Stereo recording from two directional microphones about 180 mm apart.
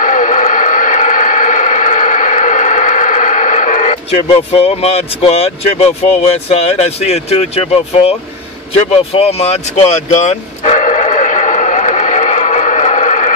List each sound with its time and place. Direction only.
0.0 s a sound: 45° left (ahead or behind)
4.3 s speech: 35° left (ahead or behind)
8.9 s dog: 35° left (ahead or behind)